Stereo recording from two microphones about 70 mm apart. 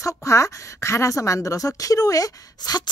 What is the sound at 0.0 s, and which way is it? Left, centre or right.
A woman's voice, left.